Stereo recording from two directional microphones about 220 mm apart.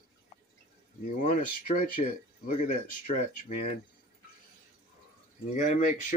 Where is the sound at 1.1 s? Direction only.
35° left (ahead or behind).